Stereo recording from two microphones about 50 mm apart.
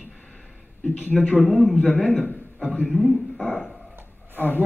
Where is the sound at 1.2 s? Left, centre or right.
Left.